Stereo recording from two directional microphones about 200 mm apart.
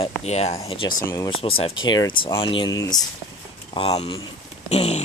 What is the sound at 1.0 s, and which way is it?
Speech, 15° left (ahead or behind).